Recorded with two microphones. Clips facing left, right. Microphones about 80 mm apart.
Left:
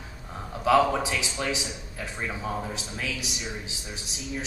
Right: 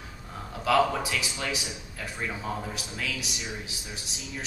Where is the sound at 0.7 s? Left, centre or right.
Left.